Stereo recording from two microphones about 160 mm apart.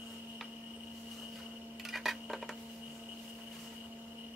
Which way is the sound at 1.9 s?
Centre (ahead or behind).